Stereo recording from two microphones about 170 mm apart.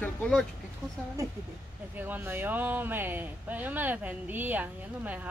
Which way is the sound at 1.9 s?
10° right (ahead or behind).